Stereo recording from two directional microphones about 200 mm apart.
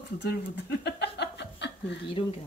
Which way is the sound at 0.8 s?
60° left (ahead or behind).